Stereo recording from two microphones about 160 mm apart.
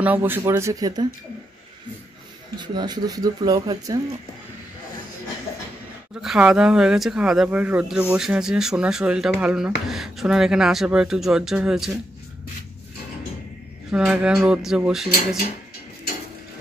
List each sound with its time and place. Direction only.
0.0 s speech: 10° right (ahead or behind)
2.5 s speech: 25° right (ahead or behind)
6.2 s speech: 5° right (ahead or behind)
13.9 s speech: 5° right (ahead or behind)